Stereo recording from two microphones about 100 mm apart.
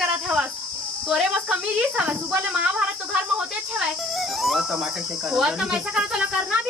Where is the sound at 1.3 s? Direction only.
10° right (ahead or behind).